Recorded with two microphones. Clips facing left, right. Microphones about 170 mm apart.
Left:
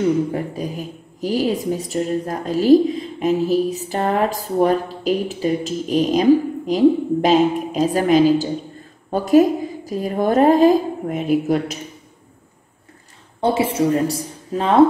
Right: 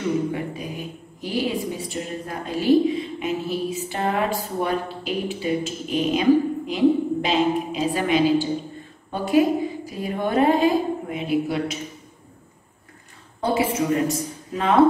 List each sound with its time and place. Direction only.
0.3 s a woman's voice: 40° left (ahead or behind)
13.4 s a woman's voice: 30° left (ahead or behind)